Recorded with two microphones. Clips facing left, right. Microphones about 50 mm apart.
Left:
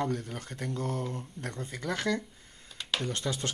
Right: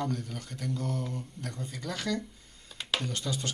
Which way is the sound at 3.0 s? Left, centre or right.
Left.